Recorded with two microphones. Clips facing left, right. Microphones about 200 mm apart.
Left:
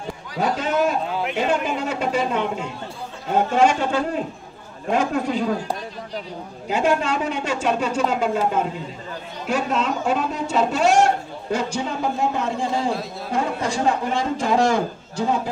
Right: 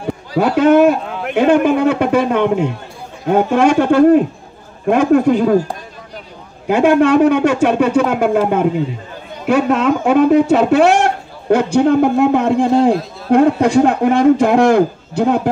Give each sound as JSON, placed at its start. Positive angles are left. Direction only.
{"t": 0.4, "sound": "a man's voice", "side_deg": -65}
{"t": 6.7, "sound": "a man's voice", "side_deg": -60}